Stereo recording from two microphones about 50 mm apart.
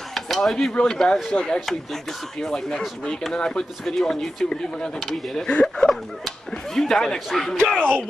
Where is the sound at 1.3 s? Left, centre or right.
Centre.